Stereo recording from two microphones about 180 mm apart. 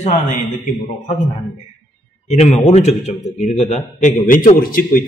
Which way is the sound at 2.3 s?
40° left (ahead or behind).